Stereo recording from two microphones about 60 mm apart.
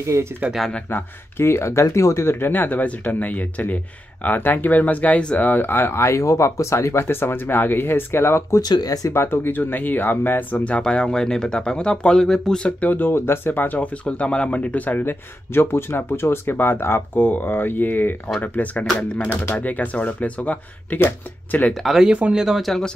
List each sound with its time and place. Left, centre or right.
0.0 s speech: right
0.8 s speech: left
2.2 s speech: left
8.5 s speech: left
9.1 s speech: left
10.6 s speech: centre
12.8 s speech: left
14.0 s speech: centre
21.8 s speech: centre
22.7 s speech: centre